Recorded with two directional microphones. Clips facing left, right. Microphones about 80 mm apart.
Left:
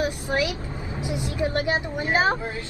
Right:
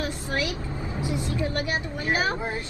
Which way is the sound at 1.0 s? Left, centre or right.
Left.